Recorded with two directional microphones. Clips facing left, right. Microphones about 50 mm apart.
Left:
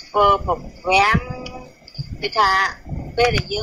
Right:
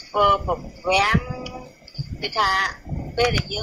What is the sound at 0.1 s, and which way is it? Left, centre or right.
A woman's voice, left.